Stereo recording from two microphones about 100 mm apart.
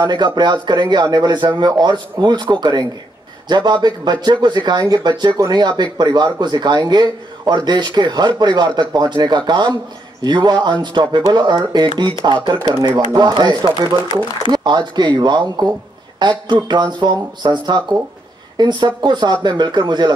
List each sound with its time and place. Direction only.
0.0 s speech: 45° right (ahead or behind)
12.5 s speech: 30° right (ahead or behind)
13.1 s speech: 45° right (ahead or behind)